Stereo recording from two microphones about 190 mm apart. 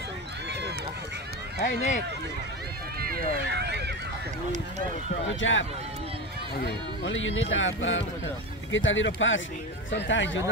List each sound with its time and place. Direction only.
1.6 s speech: 40° left (ahead or behind)
3.0 s run: 55° right (ahead or behind)
5.3 s speech: 80° left
6.5 s speech: 55° left (ahead or behind)
7.1 s speech: 90° left
9.8 s speech: 75° left (ahead or behind)